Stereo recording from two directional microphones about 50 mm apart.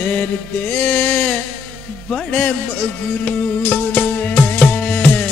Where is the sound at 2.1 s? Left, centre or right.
Left.